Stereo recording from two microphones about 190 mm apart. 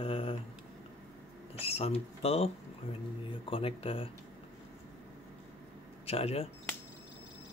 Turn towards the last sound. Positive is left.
turn(degrees=30)  # may be behind; listen again after turning